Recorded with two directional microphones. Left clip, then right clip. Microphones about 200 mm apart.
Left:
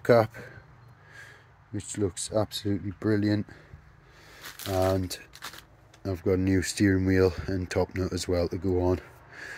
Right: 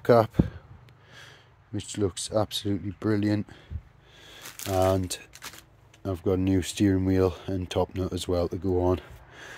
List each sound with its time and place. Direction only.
0.0 s speech: 10° right (ahead or behind)
4.6 s speech: 20° right (ahead or behind)